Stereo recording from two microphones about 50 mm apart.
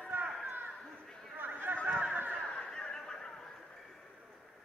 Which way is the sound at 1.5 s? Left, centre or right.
Right.